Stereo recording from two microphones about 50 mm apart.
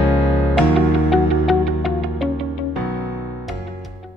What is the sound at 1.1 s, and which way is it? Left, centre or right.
Music, centre.